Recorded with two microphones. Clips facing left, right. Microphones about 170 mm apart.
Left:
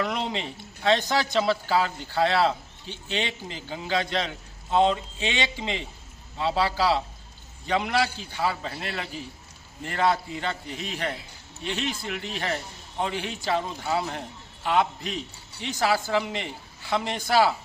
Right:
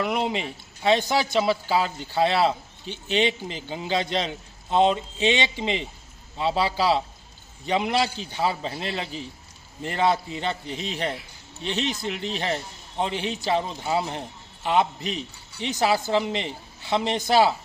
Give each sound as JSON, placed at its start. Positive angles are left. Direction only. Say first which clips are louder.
{"t": 0.0, "sound": "a man's voice", "louder": "right 3 dB", "side_deg": -15}